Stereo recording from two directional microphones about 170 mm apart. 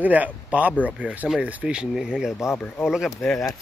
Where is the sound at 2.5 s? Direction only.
10° left (ahead or behind).